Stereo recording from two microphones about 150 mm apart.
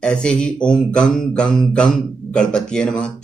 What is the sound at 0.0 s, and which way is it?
A man's voice, 5° left (ahead or behind).